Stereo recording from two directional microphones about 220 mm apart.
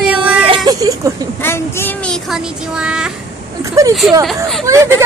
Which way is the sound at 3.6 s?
15° right (ahead or behind).